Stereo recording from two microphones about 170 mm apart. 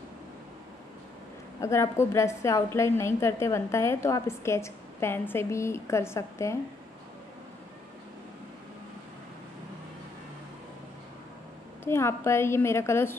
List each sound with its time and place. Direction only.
1.6 s a woman's voice: 15° left (ahead or behind)
11.8 s a woman's voice: 15° left (ahead or behind)